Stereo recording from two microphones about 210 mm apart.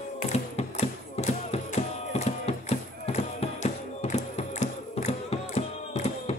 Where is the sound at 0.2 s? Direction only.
35° left (ahead or behind).